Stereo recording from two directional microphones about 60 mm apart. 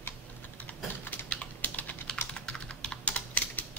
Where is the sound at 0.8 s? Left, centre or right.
Left.